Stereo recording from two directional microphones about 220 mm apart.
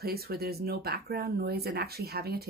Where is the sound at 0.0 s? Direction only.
45° right (ahead or behind).